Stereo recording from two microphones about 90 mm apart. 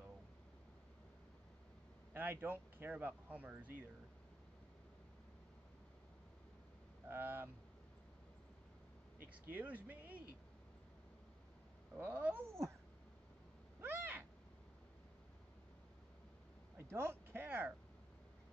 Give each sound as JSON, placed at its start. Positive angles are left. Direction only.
{"t": 2.1, "sound": "speech", "side_deg": -25}
{"t": 7.1, "sound": "speech", "side_deg": -25}
{"t": 9.5, "sound": "speech", "side_deg": -20}
{"t": 12.0, "sound": "cat", "side_deg": -20}
{"t": 13.7, "sound": "cat", "side_deg": -20}
{"t": 16.7, "sound": "a sound", "side_deg": -30}